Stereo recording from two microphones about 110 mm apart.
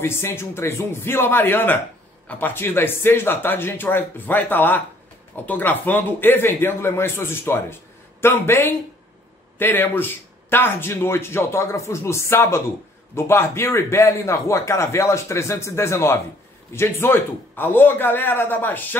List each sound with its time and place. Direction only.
0.0 s a man's voice: 20° left (ahead or behind)